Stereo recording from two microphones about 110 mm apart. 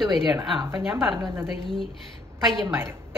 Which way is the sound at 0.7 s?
25° right (ahead or behind).